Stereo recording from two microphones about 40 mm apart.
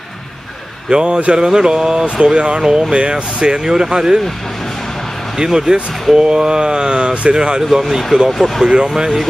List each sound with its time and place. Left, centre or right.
0.8 s speech: right
5.4 s speech: centre
8.3 s speech: centre
8.6 s speech: centre